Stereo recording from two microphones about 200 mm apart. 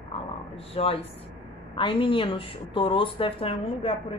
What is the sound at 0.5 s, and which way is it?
A woman's voice, 30° left (ahead or behind).